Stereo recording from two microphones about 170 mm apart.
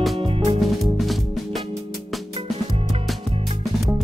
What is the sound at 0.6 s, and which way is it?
Music, centre (ahead or behind).